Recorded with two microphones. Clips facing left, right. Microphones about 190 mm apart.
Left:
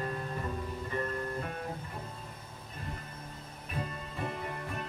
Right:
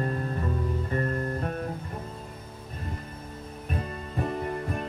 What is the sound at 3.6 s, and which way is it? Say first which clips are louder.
Music: right 4 dB; 45° right (ahead or behind).